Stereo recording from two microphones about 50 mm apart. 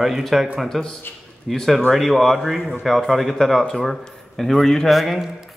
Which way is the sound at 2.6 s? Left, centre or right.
Centre.